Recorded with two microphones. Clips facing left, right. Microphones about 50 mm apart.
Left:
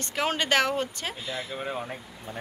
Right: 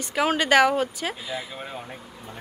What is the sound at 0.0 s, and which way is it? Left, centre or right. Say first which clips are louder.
Speech: right 4 dB; centre.